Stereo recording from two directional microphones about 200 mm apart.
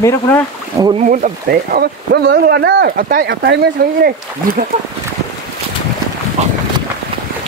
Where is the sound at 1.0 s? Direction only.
40° right (ahead or behind).